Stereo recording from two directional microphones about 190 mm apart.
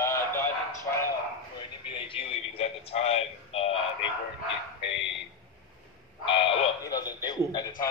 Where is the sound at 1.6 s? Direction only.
25° left (ahead or behind).